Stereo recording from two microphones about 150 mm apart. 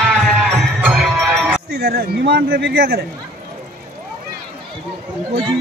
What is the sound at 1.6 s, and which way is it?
A man's voice, 90° right.